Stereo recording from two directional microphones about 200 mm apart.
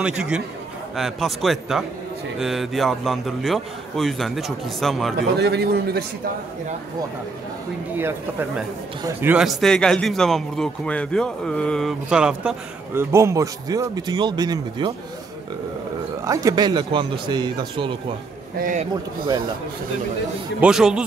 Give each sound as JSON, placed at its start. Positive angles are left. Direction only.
{"t": 0.0, "sound": "a man's voice", "side_deg": -5}
{"t": 5.4, "sound": "a man's voice", "side_deg": -55}
{"t": 8.0, "sound": "a man's voice", "side_deg": -10}
{"t": 16.3, "sound": "speech", "side_deg": -15}
{"t": 18.6, "sound": "a man's voice", "side_deg": -45}
{"t": 20.6, "sound": "a man's voice", "side_deg": -5}